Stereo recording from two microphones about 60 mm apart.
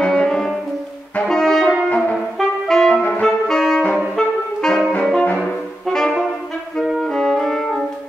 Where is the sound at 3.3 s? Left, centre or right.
Centre.